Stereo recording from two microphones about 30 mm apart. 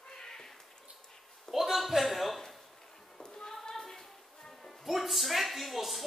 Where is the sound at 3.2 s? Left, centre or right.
Left.